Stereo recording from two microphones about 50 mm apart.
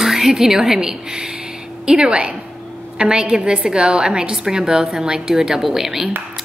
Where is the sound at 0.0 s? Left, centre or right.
Centre.